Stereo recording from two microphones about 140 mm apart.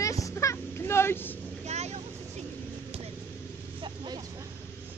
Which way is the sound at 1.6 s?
50° right (ahead or behind).